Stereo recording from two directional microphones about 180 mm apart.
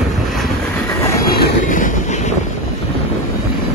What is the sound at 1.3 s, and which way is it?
Train, 50° left (ahead or behind).